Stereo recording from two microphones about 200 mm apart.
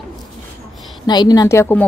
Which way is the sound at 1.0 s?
20° left (ahead or behind).